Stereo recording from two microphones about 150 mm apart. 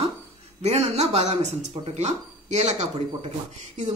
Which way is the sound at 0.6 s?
45° right (ahead or behind).